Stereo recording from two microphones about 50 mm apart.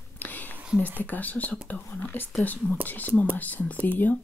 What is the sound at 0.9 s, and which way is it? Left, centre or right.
Speech, left.